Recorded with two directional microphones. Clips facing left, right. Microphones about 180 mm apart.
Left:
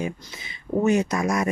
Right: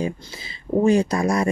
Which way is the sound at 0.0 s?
30° right (ahead or behind).